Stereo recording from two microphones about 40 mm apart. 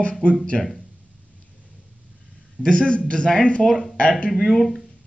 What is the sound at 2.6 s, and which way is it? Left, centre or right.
A man's voice, left.